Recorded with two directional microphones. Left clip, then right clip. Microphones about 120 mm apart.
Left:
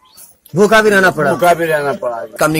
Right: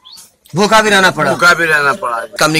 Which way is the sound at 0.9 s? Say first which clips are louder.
Right 1 dB; 5° right (ahead or behind).